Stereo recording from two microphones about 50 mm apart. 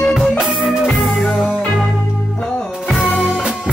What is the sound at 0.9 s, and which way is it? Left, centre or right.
Music, centre.